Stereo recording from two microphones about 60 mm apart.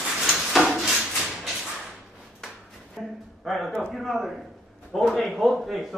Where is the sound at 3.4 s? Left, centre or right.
Centre.